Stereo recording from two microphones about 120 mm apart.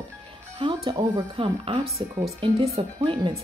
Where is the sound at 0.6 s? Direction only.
40° right (ahead or behind).